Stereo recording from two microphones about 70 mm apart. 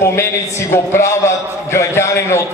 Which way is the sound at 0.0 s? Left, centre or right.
Left.